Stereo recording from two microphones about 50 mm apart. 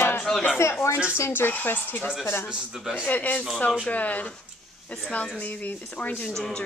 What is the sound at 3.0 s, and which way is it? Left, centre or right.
Speech, left.